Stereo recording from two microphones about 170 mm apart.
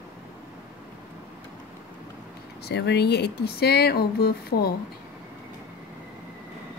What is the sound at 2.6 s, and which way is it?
Speech, 80° left.